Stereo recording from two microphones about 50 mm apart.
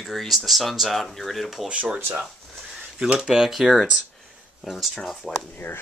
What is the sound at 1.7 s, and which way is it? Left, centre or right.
Speech, right.